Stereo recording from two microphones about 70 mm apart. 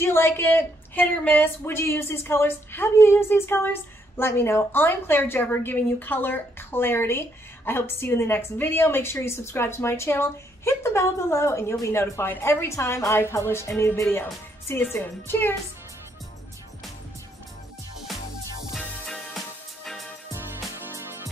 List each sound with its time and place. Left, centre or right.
0.0 s a woman's voice: left
18.6 s music: centre
19.0 s music: centre
19.3 s music: centre
20.3 s music: right